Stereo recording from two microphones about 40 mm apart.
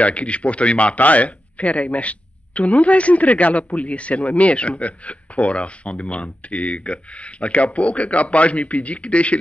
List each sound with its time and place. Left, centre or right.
0.0 s speech: left